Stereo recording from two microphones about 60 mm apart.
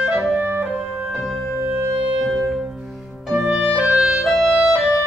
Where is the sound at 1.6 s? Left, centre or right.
Right.